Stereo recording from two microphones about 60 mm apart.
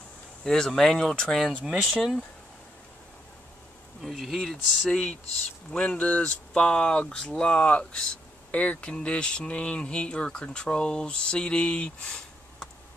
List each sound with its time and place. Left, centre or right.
0.4 s speech: centre
1.7 s speech: centre
4.0 s speech: centre
4.8 s speech: centre